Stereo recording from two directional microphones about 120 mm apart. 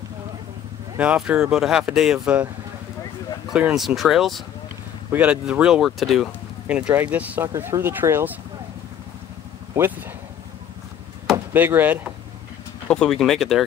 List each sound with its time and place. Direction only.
0.9 s speech: 10° right (ahead or behind)
3.5 s speech: 5° right (ahead or behind)
6.7 s speech: 10° right (ahead or behind)
7.4 s speech: 25° right (ahead or behind)
11.5 s speech: 15° right (ahead or behind)
12.8 s speech: 5° left (ahead or behind)